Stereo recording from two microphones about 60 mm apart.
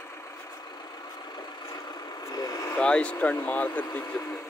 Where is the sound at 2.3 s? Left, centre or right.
Left.